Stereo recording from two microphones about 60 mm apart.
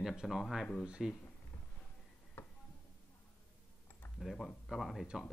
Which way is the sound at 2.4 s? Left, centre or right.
Left.